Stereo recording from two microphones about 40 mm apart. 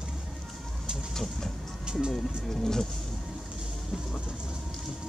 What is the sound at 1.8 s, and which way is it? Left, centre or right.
Music, centre.